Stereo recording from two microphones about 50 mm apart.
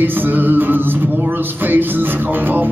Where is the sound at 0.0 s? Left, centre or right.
Right.